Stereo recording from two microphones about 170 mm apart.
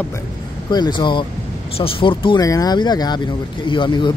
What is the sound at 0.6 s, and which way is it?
Speech, 25° left (ahead or behind).